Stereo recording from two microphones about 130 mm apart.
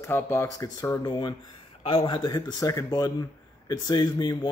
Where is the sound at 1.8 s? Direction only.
45° left (ahead or behind).